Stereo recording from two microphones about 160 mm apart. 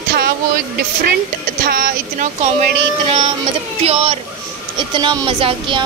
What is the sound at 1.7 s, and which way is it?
Speech, 70° right (ahead or behind).